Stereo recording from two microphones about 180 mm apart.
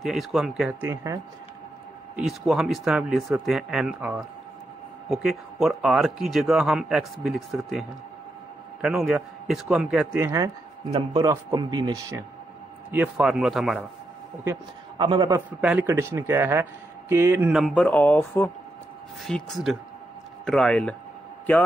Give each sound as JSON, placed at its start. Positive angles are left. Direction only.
{"t": 0.0, "sound": "speech", "side_deg": 0}
{"t": 2.1, "sound": "speech", "side_deg": -5}
{"t": 8.8, "sound": "speech", "side_deg": -5}
{"t": 10.1, "sound": "speech", "side_deg": -15}
{"t": 12.9, "sound": "speech", "side_deg": -5}
{"t": 15.0, "sound": "speech", "side_deg": -25}
{"t": 15.6, "sound": "speech", "side_deg": -10}
{"t": 17.5, "sound": "speech", "side_deg": 0}